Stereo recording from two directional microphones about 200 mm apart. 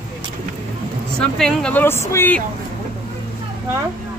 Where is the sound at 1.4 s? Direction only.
5° left (ahead or behind).